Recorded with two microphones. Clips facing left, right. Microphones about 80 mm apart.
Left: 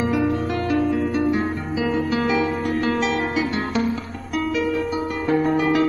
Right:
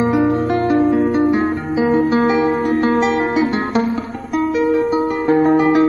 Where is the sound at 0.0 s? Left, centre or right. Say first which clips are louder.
Right 6 dB; right.